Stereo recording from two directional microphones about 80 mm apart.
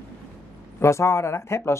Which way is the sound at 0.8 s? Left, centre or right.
Left.